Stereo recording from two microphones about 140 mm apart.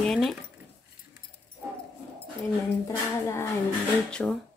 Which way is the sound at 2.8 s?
20° left (ahead or behind).